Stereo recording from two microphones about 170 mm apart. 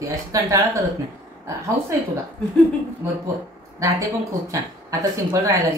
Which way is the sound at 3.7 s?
20° right (ahead or behind).